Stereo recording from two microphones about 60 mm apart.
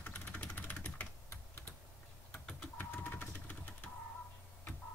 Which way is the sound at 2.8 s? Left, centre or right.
Left.